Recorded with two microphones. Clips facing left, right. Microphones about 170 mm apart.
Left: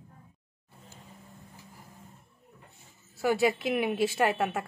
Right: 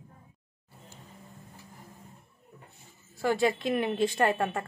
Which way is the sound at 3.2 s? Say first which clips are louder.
Left 1 dB; 5° left (ahead or behind).